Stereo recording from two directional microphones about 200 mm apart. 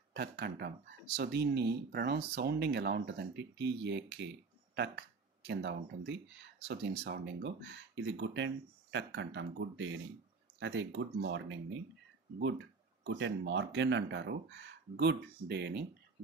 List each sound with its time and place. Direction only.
0.1 s speech: 55° right (ahead or behind)
13.0 s speech: 65° right (ahead or behind)